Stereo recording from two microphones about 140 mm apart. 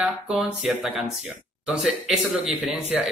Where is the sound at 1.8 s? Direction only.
5° right (ahead or behind).